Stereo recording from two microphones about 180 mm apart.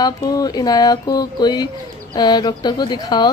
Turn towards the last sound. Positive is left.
turn(degrees=25)  # may be behind; listen again after turning